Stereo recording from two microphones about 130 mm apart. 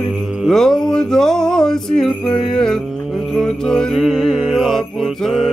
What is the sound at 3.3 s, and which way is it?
Mantra, 5° left (ahead or behind).